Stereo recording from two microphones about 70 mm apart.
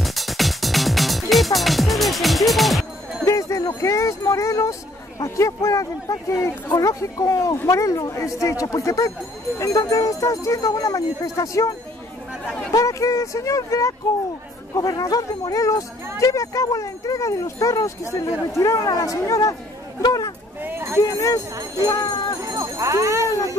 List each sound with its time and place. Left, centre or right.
0.0 s music: centre
3.3 s speech: left
12.7 s speech: left
14.8 s speech: left
20.0 s speech: left
20.6 s a sound: right
21.1 s speech: left
22.4 s speech: right